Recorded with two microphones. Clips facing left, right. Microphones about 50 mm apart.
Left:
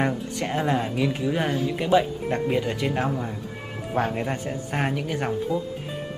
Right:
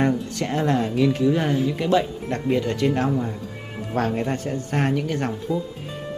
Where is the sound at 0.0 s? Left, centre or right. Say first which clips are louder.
Right 3 dB; centre.